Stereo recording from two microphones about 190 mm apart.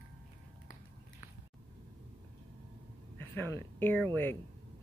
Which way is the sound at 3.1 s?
10° left (ahead or behind).